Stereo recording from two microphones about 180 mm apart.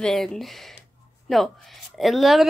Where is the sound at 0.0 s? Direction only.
5° left (ahead or behind).